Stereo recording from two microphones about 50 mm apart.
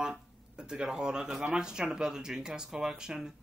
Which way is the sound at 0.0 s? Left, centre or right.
Centre.